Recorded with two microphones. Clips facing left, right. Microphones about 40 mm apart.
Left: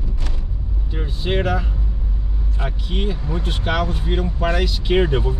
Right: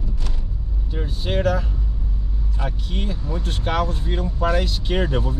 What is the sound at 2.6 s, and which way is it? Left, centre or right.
Speech, left.